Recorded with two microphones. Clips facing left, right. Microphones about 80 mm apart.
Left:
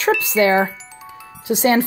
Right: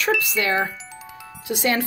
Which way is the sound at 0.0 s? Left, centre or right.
Left.